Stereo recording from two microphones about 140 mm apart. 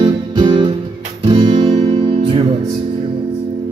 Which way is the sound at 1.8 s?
35° right (ahead or behind).